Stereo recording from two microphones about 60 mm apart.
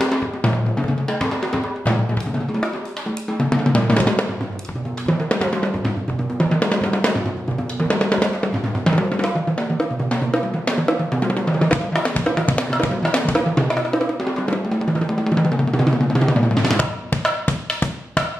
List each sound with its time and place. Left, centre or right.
3.3 s drum: centre
5.3 s drum: centre
6.3 s music: centre
7.9 s drum: centre
12.7 s music: centre
15.0 s drum: centre